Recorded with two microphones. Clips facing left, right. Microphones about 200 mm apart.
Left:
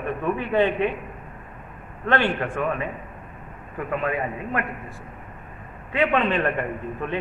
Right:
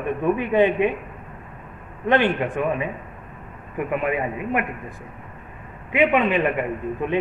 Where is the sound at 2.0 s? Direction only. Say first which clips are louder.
Right 3 dB; 15° right (ahead or behind).